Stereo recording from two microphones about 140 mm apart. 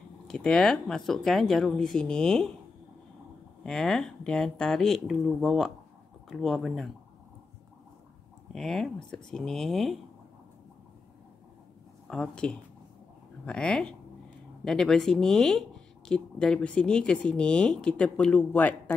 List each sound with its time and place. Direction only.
0.3 s speech: 5° left (ahead or behind)
3.6 s speech: 5° left (ahead or behind)
8.5 s speech: centre (ahead or behind)
12.1 s speech: 5° left (ahead or behind)